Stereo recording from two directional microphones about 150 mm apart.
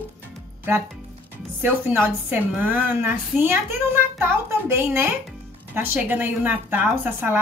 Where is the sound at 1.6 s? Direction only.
15° right (ahead or behind).